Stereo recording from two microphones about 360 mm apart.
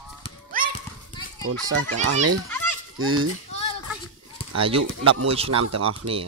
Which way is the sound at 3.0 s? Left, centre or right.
Right.